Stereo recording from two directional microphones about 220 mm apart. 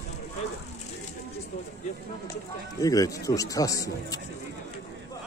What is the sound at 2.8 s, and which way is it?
Speech, 15° left (ahead or behind).